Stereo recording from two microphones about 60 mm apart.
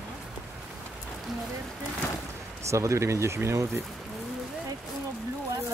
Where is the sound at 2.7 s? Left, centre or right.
Right.